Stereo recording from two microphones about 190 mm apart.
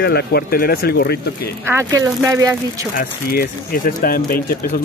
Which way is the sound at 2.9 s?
50° left (ahead or behind).